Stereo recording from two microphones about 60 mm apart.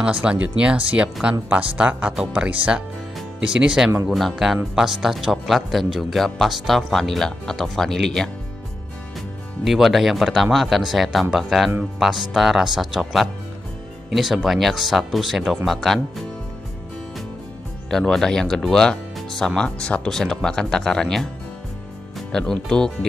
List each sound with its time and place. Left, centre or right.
0.0 s speech: centre
4.1 s speech: centre
9.7 s speech: centre
17.8 s speech: centre
22.3 s speech: centre